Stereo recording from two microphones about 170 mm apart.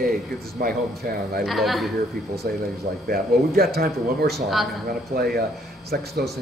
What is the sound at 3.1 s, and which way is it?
Speech, 65° right (ahead or behind).